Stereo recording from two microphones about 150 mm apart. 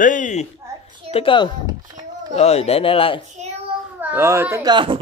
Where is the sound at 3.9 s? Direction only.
15° right (ahead or behind).